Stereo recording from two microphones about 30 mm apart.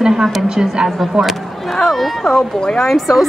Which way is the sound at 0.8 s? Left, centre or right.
Right.